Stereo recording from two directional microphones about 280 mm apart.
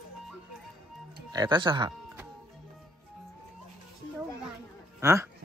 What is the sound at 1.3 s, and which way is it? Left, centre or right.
Music, centre.